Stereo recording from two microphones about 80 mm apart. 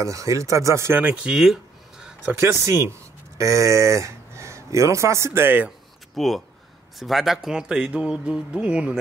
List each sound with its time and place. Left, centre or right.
0.0 s speech: right
1.3 s a sound: centre
2.3 s speech: right
6.1 s speech: centre